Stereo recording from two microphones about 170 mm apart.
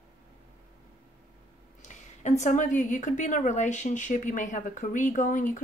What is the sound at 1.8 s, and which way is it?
A woman's voice, 45° left (ahead or behind).